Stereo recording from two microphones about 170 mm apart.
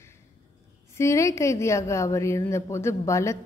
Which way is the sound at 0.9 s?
15° left (ahead or behind).